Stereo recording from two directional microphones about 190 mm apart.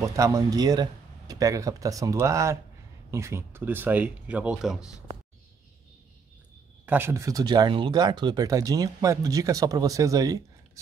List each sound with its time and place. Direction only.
0.0 s speech: 15° right (ahead or behind)
6.9 s speech: 10° right (ahead or behind)